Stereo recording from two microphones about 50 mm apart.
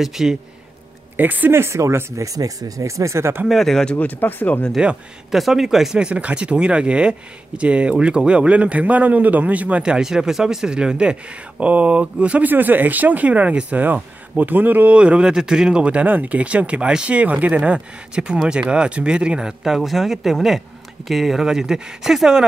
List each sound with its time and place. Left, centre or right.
0.0 s speech: centre
1.1 s speech: right
1.5 s speech: right
3.4 s speech: centre
4.0 s speech: left
5.3 s speech: centre
5.9 s speech: right
9.9 s speech: centre
12.4 s speech: right
15.0 s speech: right
19.6 s speech: centre